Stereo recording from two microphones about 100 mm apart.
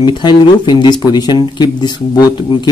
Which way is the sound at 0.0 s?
45° left (ahead or behind).